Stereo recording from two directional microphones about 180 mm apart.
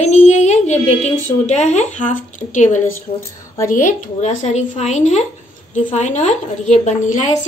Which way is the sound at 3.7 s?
45° left (ahead or behind).